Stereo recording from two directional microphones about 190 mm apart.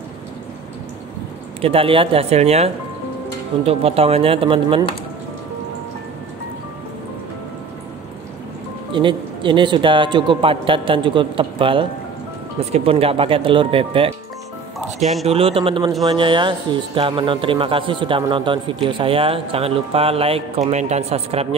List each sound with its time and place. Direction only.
1.6 s a man's voice: 30° right (ahead or behind)
8.9 s a man's voice: 25° right (ahead or behind)
15.2 s a man's voice: 30° right (ahead or behind)